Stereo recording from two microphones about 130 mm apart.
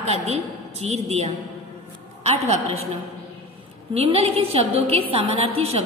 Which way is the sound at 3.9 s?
50° right (ahead or behind).